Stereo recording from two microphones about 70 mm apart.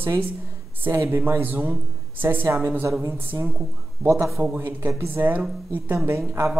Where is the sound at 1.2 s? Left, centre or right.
Right.